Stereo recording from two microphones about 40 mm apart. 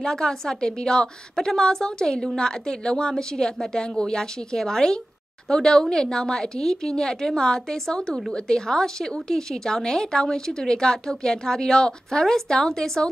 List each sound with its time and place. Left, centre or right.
0.0 s a woman's voice: centre